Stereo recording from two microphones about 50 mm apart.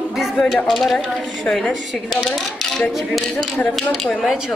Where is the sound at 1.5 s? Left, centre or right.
Left.